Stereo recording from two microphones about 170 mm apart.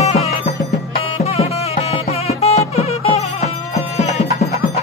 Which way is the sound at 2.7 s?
40° left (ahead or behind).